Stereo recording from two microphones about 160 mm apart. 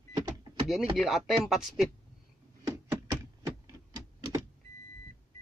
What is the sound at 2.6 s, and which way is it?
Door, 15° right (ahead or behind).